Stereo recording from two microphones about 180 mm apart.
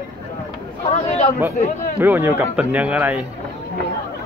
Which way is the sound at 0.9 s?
35° left (ahead or behind).